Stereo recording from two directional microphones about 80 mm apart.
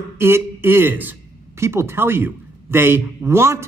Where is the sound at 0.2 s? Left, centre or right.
Right.